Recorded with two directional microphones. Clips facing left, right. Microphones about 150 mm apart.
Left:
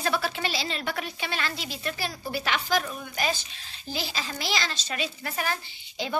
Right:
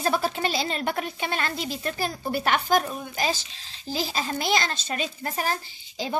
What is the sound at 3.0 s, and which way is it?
A child's voice, 30° right (ahead or behind).